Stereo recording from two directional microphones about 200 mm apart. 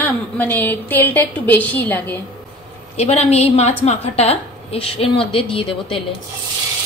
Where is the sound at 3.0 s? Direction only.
30° left (ahead or behind).